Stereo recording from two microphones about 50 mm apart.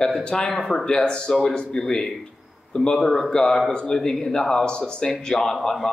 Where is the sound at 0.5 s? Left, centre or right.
Centre.